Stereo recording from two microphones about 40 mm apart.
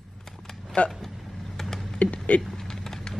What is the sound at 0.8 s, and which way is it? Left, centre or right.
Speech, left.